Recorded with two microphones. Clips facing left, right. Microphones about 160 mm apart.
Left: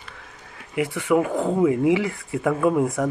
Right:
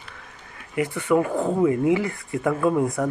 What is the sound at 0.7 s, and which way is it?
Speech, 10° left (ahead or behind).